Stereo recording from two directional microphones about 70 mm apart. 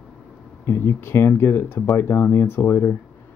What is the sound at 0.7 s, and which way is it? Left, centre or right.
Speech, left.